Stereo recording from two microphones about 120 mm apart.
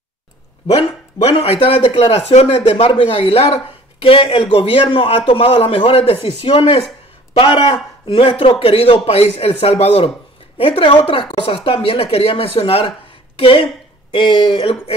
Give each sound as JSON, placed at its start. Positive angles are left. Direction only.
{"t": 0.7, "sound": "speech", "side_deg": 55}